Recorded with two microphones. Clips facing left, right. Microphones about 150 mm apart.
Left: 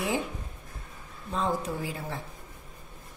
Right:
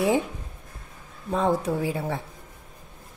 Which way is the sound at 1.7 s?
65° right (ahead or behind).